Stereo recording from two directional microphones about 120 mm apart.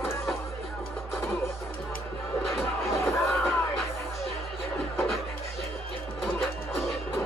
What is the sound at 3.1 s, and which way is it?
Music, centre (ahead or behind).